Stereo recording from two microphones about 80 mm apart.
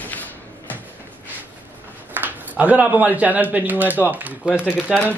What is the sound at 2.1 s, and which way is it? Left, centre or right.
A man's voice, right.